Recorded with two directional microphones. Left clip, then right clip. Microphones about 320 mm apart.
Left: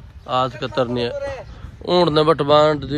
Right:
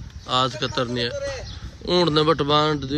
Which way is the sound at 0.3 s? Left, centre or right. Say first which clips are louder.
Left 1 dB; centre.